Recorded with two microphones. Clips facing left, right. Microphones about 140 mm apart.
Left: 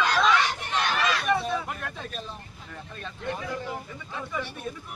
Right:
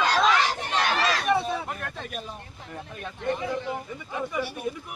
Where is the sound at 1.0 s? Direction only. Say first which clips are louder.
Right 1 dB; 35° right (ahead or behind).